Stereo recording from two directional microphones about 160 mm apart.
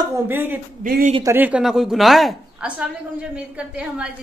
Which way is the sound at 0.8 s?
60° right (ahead or behind).